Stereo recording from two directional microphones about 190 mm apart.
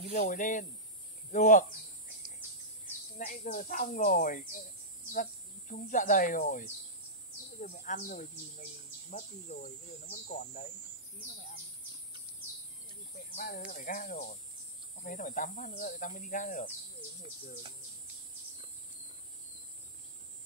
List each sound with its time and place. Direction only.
0.0 s speech: 35° left (ahead or behind)
3.2 s speech: 50° left (ahead or behind)
7.6 s speech: 45° left (ahead or behind)
11.3 s bird: 45° left (ahead or behind)
13.3 s speech: 45° left (ahead or behind)